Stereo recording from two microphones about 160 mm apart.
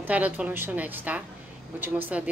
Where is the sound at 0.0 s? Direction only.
10° right (ahead or behind).